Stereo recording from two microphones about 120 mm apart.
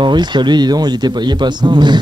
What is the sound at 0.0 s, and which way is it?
Speech, 40° right (ahead or behind).